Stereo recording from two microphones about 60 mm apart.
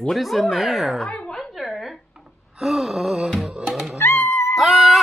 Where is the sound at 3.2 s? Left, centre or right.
Centre.